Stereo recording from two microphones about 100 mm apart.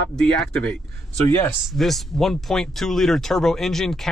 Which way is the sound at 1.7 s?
Centre (ahead or behind).